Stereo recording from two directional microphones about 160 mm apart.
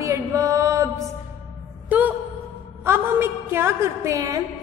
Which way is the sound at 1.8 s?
10° right (ahead or behind).